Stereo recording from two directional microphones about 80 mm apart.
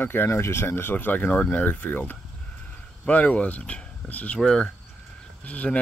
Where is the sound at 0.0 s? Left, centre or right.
Left.